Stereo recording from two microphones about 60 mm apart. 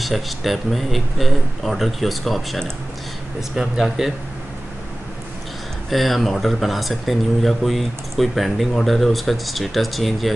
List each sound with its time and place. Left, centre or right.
0.0 s speech: centre
5.9 s speech: centre